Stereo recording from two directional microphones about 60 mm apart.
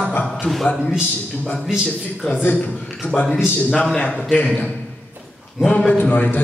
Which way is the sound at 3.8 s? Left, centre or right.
Centre.